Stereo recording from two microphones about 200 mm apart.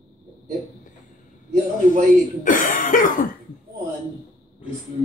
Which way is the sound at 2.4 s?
40° left (ahead or behind).